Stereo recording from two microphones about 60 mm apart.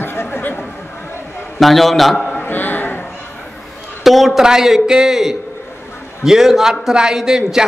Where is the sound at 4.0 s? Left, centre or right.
Centre.